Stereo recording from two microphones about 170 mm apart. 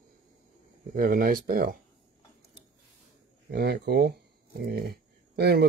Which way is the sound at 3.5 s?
70° right (ahead or behind).